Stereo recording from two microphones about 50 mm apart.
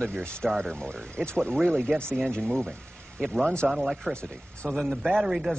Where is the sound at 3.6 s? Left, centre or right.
Centre.